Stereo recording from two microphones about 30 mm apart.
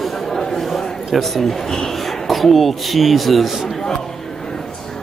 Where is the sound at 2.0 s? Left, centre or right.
Centre.